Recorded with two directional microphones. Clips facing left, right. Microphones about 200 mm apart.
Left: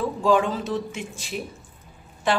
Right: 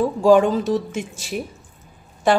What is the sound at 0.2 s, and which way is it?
A woman's voice, 45° right (ahead or behind).